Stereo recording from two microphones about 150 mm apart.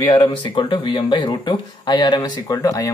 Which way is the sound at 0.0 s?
30° left (ahead or behind).